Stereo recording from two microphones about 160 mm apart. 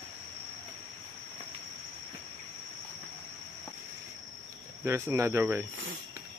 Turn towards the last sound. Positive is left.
turn(degrees=-10)  # may be behind; listen again after turning